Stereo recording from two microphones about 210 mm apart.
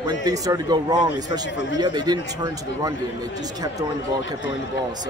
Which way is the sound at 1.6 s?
60° left (ahead or behind).